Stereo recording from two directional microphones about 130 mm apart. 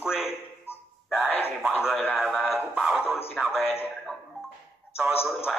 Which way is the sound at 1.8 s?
5° right (ahead or behind).